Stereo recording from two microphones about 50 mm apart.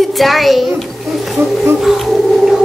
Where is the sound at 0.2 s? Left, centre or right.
Centre.